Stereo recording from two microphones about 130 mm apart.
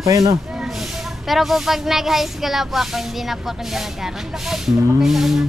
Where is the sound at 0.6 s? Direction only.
Centre (ahead or behind).